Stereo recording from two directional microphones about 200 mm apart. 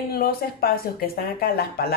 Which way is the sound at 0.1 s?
50° left (ahead or behind).